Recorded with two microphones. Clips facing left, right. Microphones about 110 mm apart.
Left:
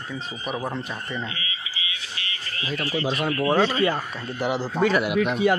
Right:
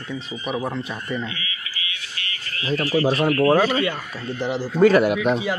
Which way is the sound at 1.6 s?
20° left (ahead or behind).